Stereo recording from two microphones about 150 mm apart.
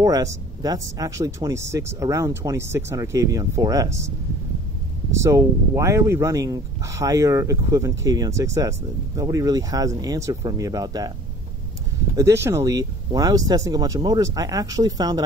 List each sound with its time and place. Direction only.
0.0 s speech: 25° right (ahead or behind)
5.1 s speech: 20° right (ahead or behind)
12.2 s speech: 20° right (ahead or behind)